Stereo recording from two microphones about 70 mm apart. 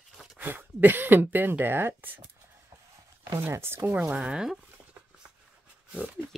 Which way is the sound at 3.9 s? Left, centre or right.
Right.